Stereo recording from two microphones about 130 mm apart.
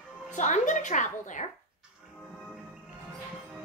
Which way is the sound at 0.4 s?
70° left (ahead or behind).